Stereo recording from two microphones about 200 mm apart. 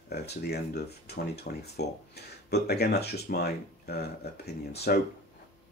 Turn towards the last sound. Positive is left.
turn(degrees=55)  # may be behind; listen again after turning